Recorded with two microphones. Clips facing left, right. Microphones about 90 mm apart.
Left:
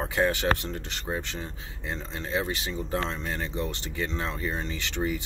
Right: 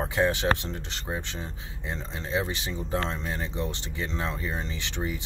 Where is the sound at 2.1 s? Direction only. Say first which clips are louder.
Even; 20° right (ahead or behind).